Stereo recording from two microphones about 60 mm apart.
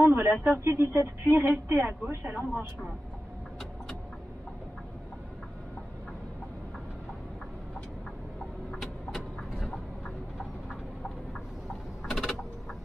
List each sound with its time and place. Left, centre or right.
0.2 s speech: right
9.1 s vehicle: centre
12.1 s a sound: centre